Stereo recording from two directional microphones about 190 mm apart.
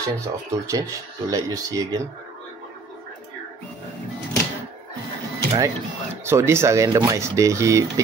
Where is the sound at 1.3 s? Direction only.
20° right (ahead or behind).